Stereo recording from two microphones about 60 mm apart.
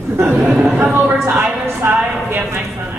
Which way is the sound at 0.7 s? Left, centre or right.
Right.